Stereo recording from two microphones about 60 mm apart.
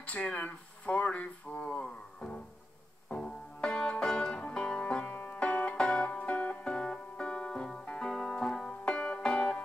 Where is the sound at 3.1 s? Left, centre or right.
Centre.